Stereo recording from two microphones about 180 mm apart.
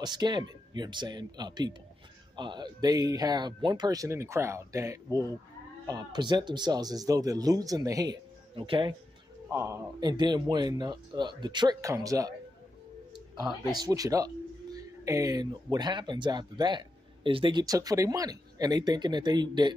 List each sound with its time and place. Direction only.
0.0 s speech: 25° right (ahead or behind)
9.5 s speech: 15° right (ahead or behind)
13.7 s speech: 20° right (ahead or behind)